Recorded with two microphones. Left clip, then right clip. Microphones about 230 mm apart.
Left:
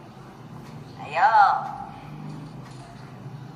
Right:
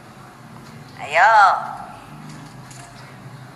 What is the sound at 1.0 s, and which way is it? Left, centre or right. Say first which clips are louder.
Speech: right 6 dB; right.